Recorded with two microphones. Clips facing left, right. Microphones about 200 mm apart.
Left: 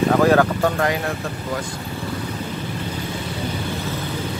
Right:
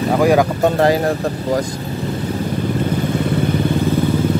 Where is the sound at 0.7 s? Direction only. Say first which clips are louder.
Right 7 dB; 35° right (ahead or behind).